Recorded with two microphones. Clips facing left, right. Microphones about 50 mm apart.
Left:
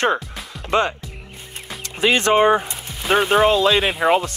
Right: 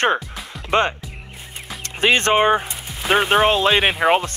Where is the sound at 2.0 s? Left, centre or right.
Right.